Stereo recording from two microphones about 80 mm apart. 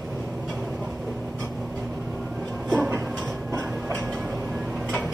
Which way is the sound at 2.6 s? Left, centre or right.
Centre.